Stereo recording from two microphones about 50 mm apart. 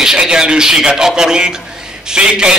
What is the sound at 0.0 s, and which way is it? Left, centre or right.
A man's voice, centre.